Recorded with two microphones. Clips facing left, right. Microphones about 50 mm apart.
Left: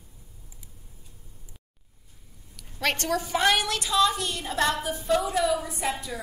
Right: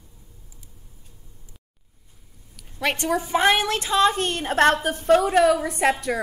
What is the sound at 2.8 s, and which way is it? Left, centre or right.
A woman's voice, centre.